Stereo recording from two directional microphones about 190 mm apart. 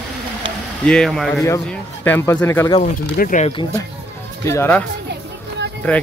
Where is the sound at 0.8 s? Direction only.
5° left (ahead or behind).